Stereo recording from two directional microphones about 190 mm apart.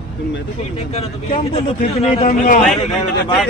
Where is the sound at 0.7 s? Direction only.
30° left (ahead or behind).